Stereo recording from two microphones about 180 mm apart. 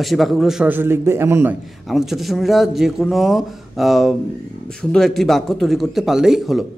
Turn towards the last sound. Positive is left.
turn(degrees=0)  # may be behind; listen again after turning